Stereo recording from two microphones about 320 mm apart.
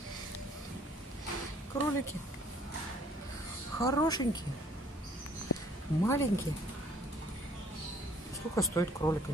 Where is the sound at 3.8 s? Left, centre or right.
Centre.